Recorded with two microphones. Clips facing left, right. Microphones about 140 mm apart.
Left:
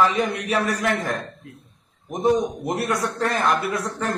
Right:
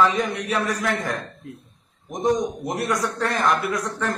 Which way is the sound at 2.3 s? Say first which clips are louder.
Left 2 dB; 10° left (ahead or behind).